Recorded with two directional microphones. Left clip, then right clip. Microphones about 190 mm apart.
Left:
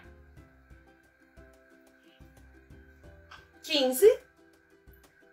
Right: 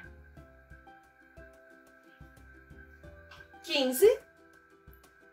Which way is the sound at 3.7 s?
15° right (ahead or behind).